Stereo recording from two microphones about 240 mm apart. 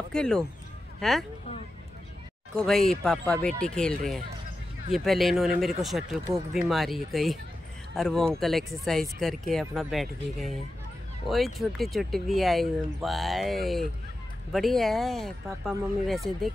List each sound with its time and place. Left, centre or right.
0.1 s speech: centre
2.5 s speech: centre
4.9 s speech: centre